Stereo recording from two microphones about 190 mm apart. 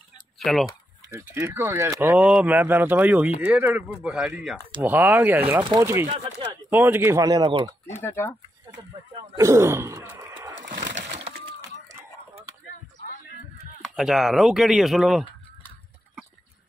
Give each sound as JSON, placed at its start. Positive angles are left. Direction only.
{"t": 0.4, "sound": "speech", "side_deg": 0}
{"t": 1.3, "sound": "speech", "side_deg": -15}
{"t": 5.6, "sound": "speech", "side_deg": -20}
{"t": 6.0, "sound": "speech", "side_deg": -35}
{"t": 6.5, "sound": "speech", "side_deg": -10}
{"t": 8.0, "sound": "speech", "side_deg": 10}
{"t": 9.4, "sound": "a sound", "side_deg": -15}
{"t": 10.9, "sound": "pigeon", "side_deg": -35}
{"t": 13.8, "sound": "speech", "side_deg": 0}